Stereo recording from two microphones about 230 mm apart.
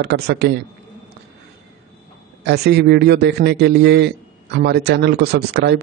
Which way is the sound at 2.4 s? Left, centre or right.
Right.